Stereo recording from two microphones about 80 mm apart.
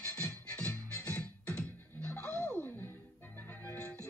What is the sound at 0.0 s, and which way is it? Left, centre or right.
Music, left.